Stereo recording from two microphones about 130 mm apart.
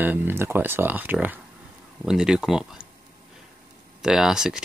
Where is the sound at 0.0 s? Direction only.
15° right (ahead or behind).